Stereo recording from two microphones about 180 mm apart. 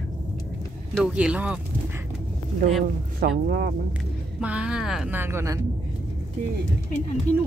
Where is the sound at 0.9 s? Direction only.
5° right (ahead or behind).